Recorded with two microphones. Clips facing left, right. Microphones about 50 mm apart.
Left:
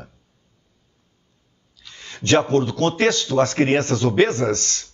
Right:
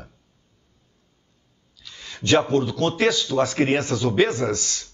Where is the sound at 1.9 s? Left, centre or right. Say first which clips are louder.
Even; left.